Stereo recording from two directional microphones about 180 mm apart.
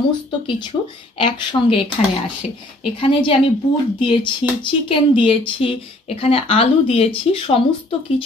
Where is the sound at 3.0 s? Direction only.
30° left (ahead or behind).